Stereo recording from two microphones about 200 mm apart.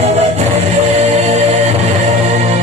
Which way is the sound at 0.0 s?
30° right (ahead or behind).